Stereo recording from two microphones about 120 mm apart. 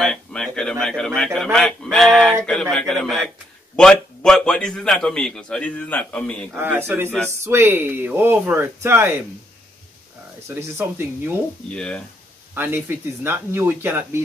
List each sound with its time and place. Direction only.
0.0 s a man's voice: 5° left (ahead or behind)
6.5 s speech: 20° right (ahead or behind)
10.5 s speech: 20° right (ahead or behind)
11.7 s a man's voice: 5° left (ahead or behind)
12.5 s speech: 15° right (ahead or behind)